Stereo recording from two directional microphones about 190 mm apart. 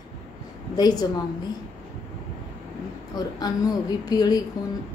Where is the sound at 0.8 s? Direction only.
20° left (ahead or behind).